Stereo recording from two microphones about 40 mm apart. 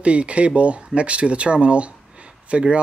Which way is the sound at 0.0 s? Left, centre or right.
Right.